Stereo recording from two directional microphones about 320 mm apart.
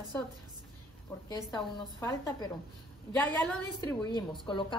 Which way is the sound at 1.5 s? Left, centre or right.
Centre.